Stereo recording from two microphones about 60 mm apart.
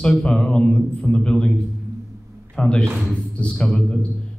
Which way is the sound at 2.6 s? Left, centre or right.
Centre.